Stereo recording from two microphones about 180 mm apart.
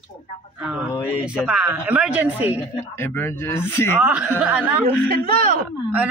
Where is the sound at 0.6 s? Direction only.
5° right (ahead or behind).